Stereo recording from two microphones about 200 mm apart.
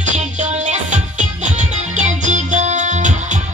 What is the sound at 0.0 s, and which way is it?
Music, 35° right (ahead or behind).